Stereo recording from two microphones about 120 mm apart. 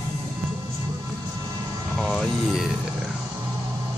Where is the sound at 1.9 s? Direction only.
5° left (ahead or behind).